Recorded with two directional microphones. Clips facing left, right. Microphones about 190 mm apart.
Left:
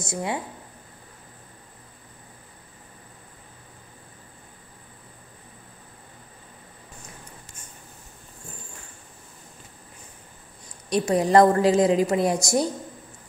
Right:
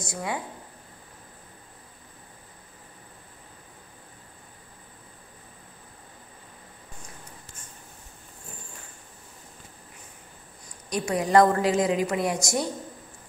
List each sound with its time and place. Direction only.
0.1 s a woman's voice: 25° left (ahead or behind)
10.9 s a woman's voice: 30° left (ahead or behind)